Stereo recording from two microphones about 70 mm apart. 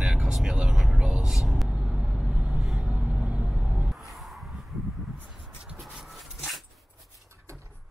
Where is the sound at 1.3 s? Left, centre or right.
Centre.